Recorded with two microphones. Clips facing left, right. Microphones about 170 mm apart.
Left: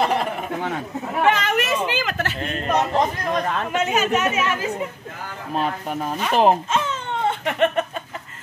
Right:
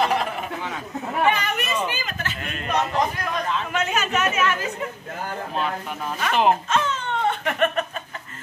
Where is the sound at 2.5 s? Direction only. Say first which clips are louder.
Left 3 dB; 35° left (ahead or behind).